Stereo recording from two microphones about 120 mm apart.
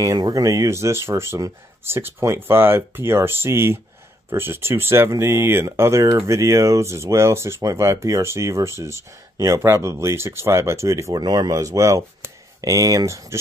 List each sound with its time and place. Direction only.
0.0 s speech: 30° right (ahead or behind)